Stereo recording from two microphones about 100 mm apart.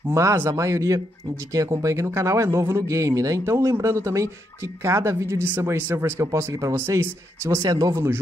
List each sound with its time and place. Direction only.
0.1 s speech: 30° right (ahead or behind)